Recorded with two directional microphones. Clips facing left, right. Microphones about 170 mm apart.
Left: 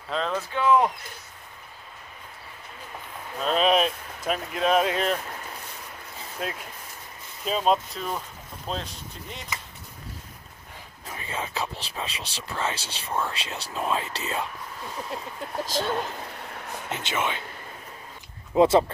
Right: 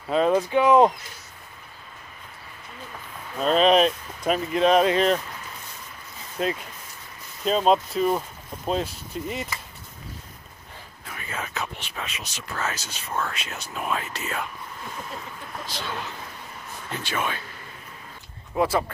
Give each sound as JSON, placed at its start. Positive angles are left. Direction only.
{"t": 0.1, "sound": "speech", "side_deg": -15}
{"t": 3.4, "sound": "speech", "side_deg": 0}
{"t": 6.4, "sound": "speech", "side_deg": 0}
{"t": 11.1, "sound": "speech", "side_deg": 30}
{"t": 15.5, "sound": "speech", "side_deg": 45}
{"t": 16.9, "sound": "speech", "side_deg": 20}
{"t": 18.5, "sound": "speech", "side_deg": 25}